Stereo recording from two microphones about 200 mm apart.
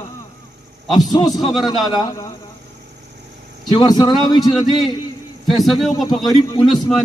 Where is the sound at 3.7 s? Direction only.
20° left (ahead or behind).